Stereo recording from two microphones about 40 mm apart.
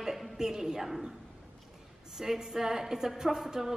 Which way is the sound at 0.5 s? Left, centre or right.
Centre.